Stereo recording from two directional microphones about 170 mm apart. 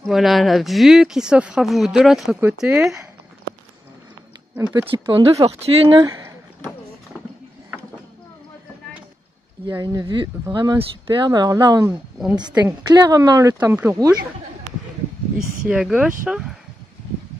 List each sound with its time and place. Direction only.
0.0 s speech: centre (ahead or behind)
4.8 s speech: 30° right (ahead or behind)
9.7 s speech: 20° right (ahead or behind)
15.3 s speech: 5° right (ahead or behind)